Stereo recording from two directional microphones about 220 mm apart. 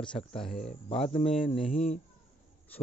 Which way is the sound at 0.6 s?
25° left (ahead or behind).